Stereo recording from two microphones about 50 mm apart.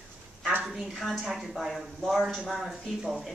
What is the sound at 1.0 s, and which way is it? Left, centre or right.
Speech, centre.